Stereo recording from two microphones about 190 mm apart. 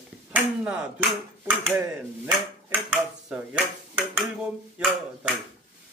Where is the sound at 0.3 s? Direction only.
5° right (ahead or behind).